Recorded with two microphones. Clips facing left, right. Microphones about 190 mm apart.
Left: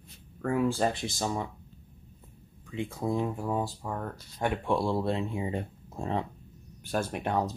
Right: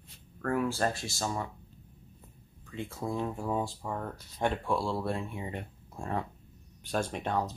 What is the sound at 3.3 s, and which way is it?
Speech, 5° left (ahead or behind).